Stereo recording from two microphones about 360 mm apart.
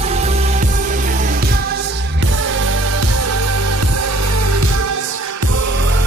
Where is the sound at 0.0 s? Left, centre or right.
Centre; by 5.5 s right.